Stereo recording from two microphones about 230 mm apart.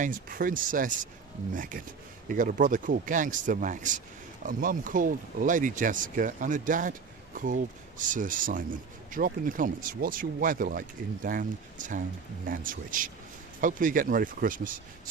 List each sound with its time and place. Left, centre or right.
0.0 s speech: right